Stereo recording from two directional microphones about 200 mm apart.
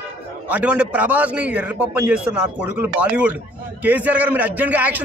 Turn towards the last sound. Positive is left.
turn(degrees=-10)  # may be behind; listen again after turning